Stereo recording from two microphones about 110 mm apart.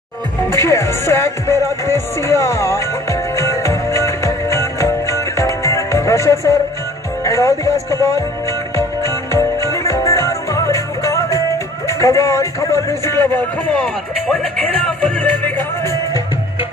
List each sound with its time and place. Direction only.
0.5 s music: 25° left (ahead or behind)
8.7 s music: 25° left (ahead or behind)
13.7 s music: 10° left (ahead or behind)